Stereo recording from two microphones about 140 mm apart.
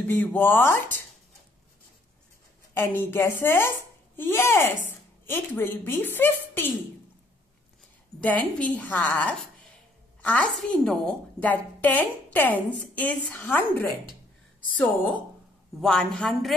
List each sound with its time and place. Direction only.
0.0 s a woman's voice: 15° left (ahead or behind)
2.7 s a woman's voice: 15° left (ahead or behind)
8.2 s a woman's voice: 10° left (ahead or behind)